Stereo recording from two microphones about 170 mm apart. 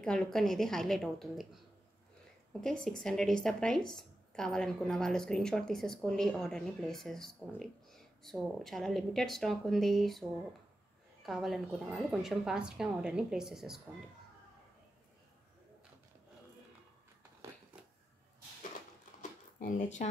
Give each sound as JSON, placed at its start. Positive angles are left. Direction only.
{"t": 0.0, "sound": "speech", "side_deg": 5}
{"t": 2.6, "sound": "speech", "side_deg": 5}
{"t": 11.2, "sound": "speech", "side_deg": 0}
{"t": 19.6, "sound": "speech", "side_deg": 45}